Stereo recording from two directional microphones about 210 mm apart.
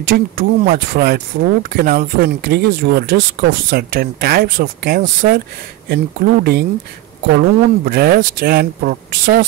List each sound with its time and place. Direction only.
0.0 s speech: 45° right (ahead or behind)